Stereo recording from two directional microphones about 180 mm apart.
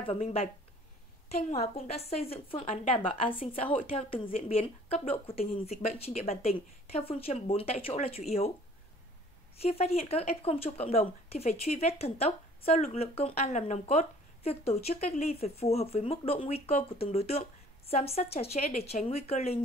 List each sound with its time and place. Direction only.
0.0 s speech: 35° left (ahead or behind)
9.6 s speech: 35° left (ahead or behind)